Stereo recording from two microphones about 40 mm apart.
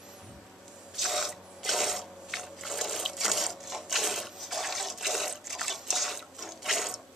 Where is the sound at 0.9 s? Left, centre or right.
Centre.